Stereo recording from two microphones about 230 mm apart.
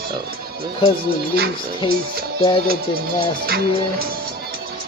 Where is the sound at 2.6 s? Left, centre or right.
Right.